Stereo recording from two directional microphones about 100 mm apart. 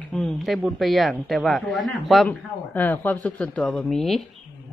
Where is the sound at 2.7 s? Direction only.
15° left (ahead or behind).